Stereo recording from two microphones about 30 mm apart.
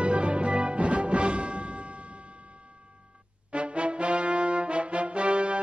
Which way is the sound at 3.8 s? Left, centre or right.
Right.